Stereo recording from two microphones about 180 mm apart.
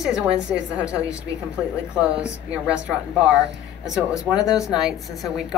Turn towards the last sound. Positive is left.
turn(degrees=-5)  # may be behind; listen again after turning